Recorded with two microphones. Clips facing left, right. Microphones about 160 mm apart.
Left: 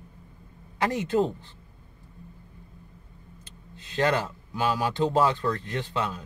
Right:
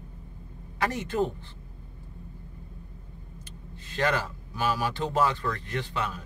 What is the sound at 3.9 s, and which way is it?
Speech, 20° left (ahead or behind).